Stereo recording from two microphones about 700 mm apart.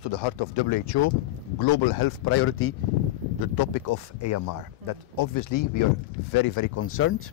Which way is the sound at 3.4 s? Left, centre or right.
Left.